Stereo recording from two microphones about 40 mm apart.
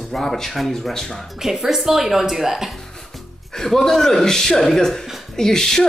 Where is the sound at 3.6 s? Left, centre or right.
Centre.